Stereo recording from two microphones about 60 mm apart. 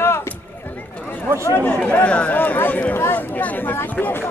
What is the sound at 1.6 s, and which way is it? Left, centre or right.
Speech, left.